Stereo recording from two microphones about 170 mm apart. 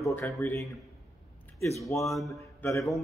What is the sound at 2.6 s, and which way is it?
Speech, 20° left (ahead or behind).